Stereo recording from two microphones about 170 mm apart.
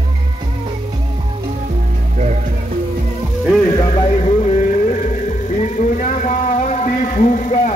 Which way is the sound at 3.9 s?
35° left (ahead or behind).